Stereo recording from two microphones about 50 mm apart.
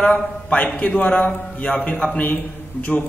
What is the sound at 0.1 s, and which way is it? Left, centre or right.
A man's voice, left.